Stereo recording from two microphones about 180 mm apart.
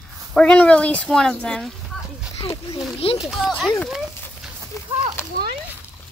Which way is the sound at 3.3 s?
Centre (ahead or behind).